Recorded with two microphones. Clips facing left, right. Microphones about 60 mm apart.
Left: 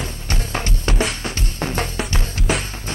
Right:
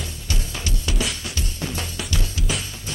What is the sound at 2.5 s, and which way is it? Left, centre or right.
Music, left.